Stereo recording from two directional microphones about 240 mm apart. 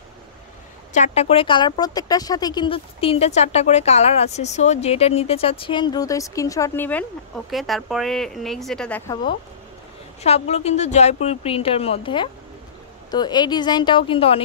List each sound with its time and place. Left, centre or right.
0.9 s a woman's voice: left; by 9.2 s centre
10.2 s speech: left